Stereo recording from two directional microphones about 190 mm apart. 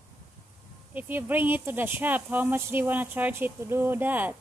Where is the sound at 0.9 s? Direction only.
10° right (ahead or behind).